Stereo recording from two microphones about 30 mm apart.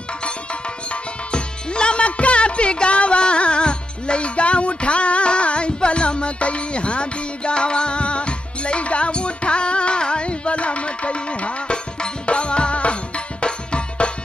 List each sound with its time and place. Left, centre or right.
1.3 s tabla: left
2.0 s music: left